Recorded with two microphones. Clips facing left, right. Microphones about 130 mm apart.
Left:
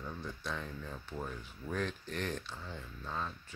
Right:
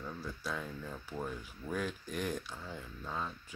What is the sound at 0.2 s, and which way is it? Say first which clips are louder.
Speech: right 2 dB; 5° right (ahead or behind).